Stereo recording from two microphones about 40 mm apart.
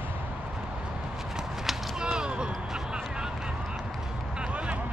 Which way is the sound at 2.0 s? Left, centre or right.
Right.